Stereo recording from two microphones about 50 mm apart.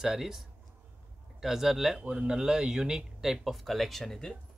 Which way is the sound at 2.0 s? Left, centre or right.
Centre.